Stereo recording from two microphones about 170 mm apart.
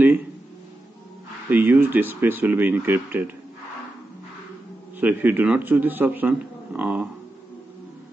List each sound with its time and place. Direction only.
1.5 s speech: 10° right (ahead or behind)
5.0 s speech: 10° right (ahead or behind)